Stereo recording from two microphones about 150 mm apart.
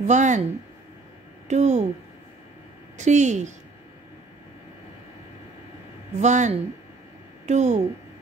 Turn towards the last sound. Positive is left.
turn(degrees=-50)  # may be behind; listen again after turning